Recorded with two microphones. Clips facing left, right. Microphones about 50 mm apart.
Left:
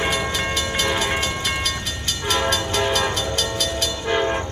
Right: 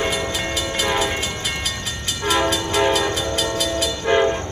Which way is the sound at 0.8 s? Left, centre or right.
Centre.